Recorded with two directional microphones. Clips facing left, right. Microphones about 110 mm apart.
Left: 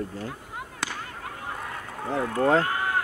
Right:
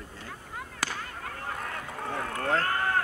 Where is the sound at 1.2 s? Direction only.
15° left (ahead or behind).